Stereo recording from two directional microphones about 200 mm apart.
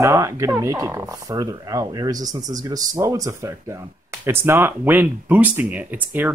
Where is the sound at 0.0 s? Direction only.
15° right (ahead or behind).